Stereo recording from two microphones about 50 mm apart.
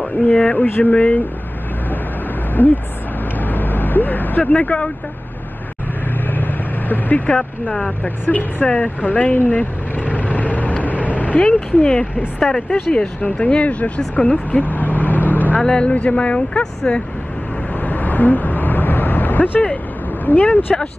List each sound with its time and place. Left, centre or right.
0.3 s a sound: left
0.9 s speech: left
2.5 s speech: left
3.3 s vehicle: left
6.2 s vehicle: left
8.0 s a sound: left
8.8 s vehicle: left
11.4 s speech: centre
14.5 s vehicle: left
15.6 s speech: centre
17.8 s vehicle: left
20.7 s speech: centre